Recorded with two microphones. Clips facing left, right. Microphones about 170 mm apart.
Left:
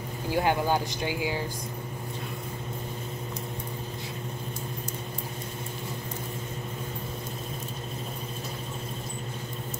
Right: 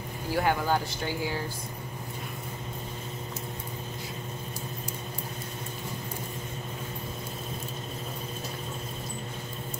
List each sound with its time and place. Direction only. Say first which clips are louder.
0.3 s speech: left 1 dB; 20° left (ahead or behind)